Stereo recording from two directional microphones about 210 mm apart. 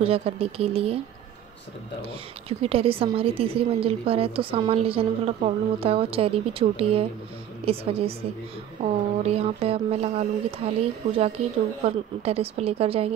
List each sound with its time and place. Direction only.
0.0 s a woman's voice: 30° right (ahead or behind)
2.6 s a woman's voice: 25° right (ahead or behind)